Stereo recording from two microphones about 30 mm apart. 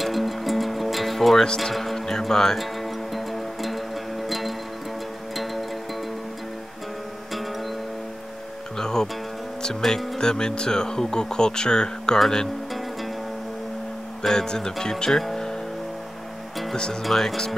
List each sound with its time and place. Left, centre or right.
0.0 s music: centre
1.6 s speech: centre
2.6 s music: centre
8.7 s music: centre
9.8 s speech: centre
14.2 s speech: left
16.7 s speech: left
17.0 s speech: centre